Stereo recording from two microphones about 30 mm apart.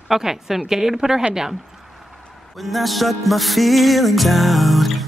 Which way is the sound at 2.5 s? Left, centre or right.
Centre.